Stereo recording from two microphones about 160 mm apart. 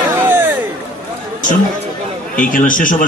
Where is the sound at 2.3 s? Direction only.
55° left (ahead or behind).